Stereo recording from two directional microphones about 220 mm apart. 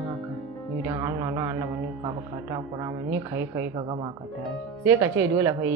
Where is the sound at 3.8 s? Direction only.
20° right (ahead or behind).